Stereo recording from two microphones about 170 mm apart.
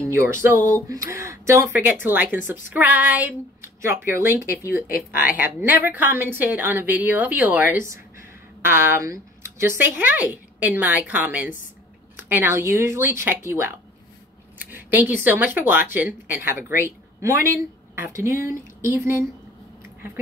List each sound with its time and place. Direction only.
0.1 s a woman's voice: 15° right (ahead or behind)